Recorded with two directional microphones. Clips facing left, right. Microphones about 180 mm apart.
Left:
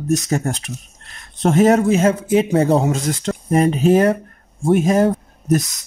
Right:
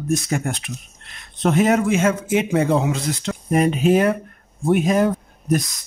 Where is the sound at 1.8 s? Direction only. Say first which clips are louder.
Left 3 dB; 35° left (ahead or behind).